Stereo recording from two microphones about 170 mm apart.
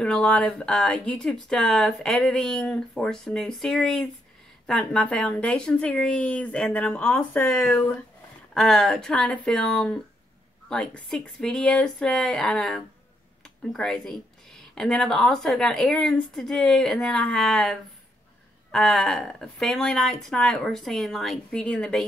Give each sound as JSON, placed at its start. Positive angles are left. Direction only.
{"t": 0.0, "sound": "speech", "side_deg": 5}